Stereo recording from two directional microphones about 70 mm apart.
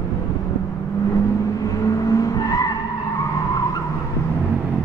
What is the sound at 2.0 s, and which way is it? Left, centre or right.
Skidding, left.